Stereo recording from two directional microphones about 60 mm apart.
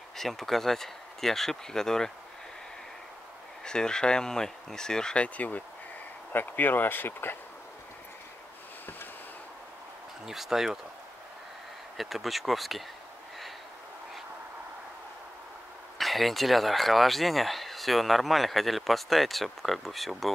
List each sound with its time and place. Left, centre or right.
0.2 s speech: centre
3.6 s speech: centre
6.3 s speech: left
10.2 s speech: centre
12.0 s speech: centre
16.0 s speech: centre